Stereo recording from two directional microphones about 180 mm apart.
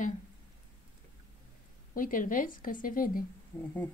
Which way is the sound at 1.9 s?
50° left (ahead or behind).